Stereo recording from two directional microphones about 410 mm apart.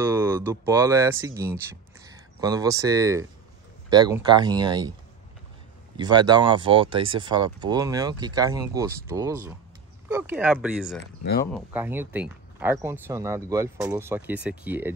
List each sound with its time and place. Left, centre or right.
0.0 s speech: centre
5.9 s speech: centre